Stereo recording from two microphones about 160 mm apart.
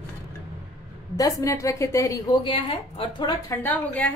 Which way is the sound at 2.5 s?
35° left (ahead or behind).